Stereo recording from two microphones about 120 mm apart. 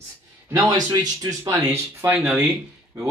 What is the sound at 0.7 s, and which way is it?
Speech, 35° right (ahead or behind).